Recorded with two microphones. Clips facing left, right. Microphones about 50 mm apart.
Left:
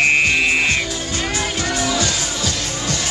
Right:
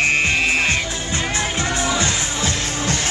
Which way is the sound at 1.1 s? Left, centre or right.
Right.